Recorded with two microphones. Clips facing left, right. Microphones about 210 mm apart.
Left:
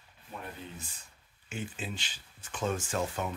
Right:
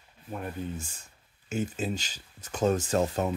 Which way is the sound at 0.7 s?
50° right (ahead or behind).